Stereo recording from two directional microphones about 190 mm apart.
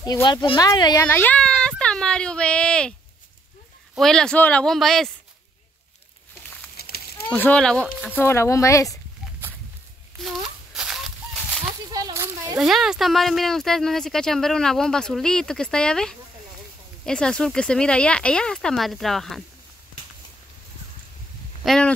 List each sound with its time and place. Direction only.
0.0 s speech: 20° left (ahead or behind)
1.0 s speech: 10° left (ahead or behind)
3.9 s speech: centre (ahead or behind)
6.8 s a sound: 55° left (ahead or behind)
7.2 s speech: 10° left (ahead or behind)
7.8 s speech: 10° right (ahead or behind)
8.2 s speech: 15° left (ahead or behind)
10.2 s a sound: centre (ahead or behind)
11.9 s a sound: 15° right (ahead or behind)
12.5 s speech: centre (ahead or behind)
21.6 s speech: 5° left (ahead or behind)